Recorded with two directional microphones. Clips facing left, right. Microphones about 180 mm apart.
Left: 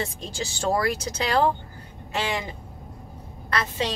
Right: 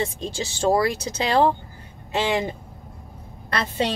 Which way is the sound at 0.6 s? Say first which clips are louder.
Right 4 dB; 30° right (ahead or behind).